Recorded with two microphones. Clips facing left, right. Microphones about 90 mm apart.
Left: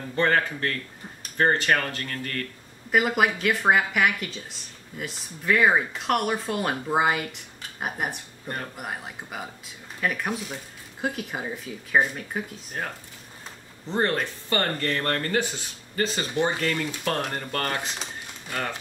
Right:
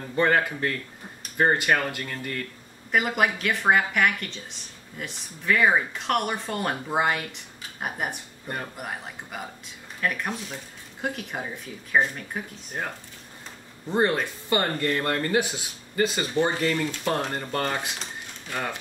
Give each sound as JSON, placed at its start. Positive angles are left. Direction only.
{"t": 0.1, "sound": "speech", "side_deg": -15}
{"t": 2.9, "sound": "a woman's voice", "side_deg": 5}
{"t": 13.8, "sound": "speech", "side_deg": -15}